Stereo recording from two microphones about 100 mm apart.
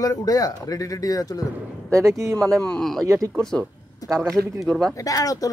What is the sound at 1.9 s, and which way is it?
Speech, 30° right (ahead or behind).